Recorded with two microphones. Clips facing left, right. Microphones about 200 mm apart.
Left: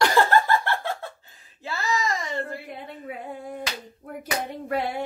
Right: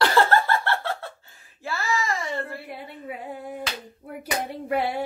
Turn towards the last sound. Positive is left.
turn(degrees=-10)  # may be behind; listen again after turning